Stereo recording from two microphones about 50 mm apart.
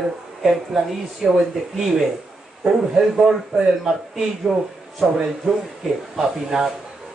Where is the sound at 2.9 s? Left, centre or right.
Centre.